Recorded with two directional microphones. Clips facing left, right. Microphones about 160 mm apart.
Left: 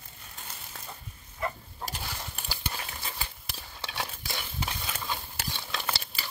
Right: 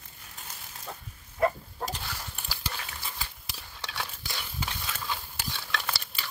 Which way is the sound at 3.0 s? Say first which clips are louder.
Left 1 dB; 20° left (ahead or behind).